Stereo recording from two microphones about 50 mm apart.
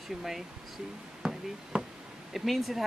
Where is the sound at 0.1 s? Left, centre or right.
Centre.